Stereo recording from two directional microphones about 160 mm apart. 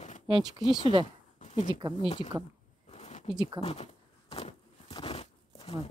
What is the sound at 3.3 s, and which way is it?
Speech, 25° right (ahead or behind).